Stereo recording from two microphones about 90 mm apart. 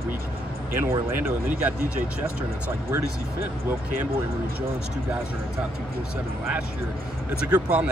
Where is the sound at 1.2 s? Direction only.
20° right (ahead or behind).